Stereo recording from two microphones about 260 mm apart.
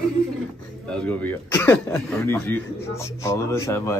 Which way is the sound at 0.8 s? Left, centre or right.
Centre.